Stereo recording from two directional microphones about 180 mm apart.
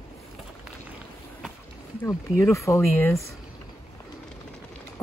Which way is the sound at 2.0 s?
15° left (ahead or behind).